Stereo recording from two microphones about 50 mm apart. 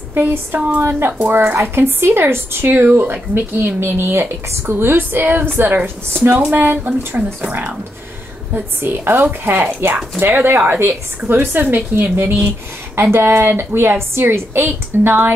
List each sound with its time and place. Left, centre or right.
0.1 s a woman's voice: right